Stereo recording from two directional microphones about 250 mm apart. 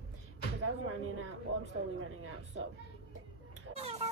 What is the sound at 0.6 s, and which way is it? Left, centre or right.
Speech, right.